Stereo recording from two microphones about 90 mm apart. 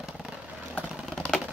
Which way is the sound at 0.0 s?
Centre (ahead or behind).